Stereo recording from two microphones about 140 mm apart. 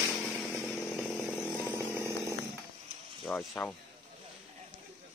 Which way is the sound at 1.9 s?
20° right (ahead or behind).